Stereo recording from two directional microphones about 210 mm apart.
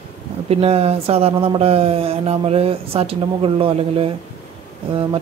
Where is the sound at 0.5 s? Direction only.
30° right (ahead or behind).